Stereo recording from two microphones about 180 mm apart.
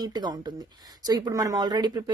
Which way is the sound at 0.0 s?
20° right (ahead or behind).